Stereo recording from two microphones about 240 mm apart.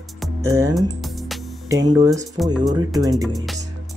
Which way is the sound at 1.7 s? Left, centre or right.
Centre.